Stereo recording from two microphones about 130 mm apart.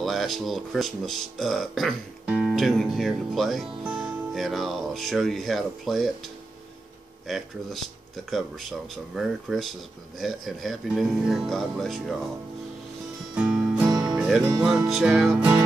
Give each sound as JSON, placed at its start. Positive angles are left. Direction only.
{"t": 0.0, "sound": "speech", "side_deg": 0}
{"t": 13.3, "sound": "music", "side_deg": -5}
{"t": 13.8, "sound": "music", "side_deg": -30}
{"t": 14.1, "sound": "speech", "side_deg": -5}